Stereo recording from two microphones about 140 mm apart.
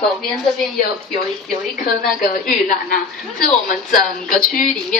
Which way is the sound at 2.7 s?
90° left.